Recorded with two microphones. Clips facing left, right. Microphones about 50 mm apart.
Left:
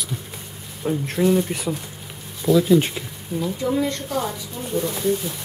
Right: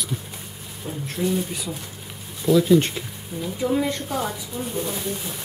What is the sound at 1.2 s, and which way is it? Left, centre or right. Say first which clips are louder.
Speech: left 5 dB; left.